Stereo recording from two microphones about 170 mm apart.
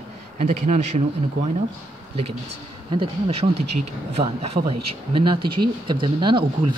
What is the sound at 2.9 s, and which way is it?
Speech, 35° right (ahead or behind).